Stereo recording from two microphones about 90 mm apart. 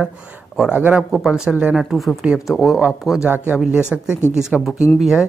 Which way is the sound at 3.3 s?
20° right (ahead or behind).